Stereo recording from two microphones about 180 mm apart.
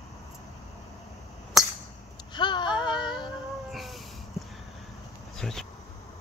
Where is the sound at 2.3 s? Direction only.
25° left (ahead or behind).